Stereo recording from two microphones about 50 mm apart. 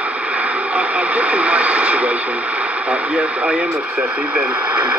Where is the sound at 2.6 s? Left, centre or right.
Right.